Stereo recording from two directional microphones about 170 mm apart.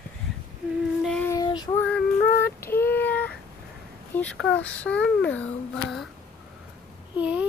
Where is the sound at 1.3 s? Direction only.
25° left (ahead or behind).